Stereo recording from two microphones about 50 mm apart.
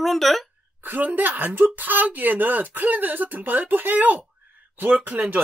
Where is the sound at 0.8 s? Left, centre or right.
Right.